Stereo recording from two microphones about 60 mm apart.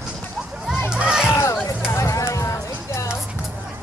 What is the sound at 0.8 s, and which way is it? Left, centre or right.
Crowd, centre.